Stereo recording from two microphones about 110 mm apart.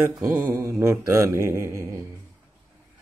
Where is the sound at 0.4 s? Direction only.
25° right (ahead or behind).